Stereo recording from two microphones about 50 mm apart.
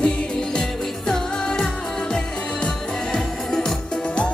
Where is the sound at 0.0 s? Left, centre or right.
Centre.